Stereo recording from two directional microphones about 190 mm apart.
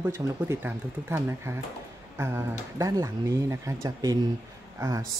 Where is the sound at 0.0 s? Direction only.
10° right (ahead or behind).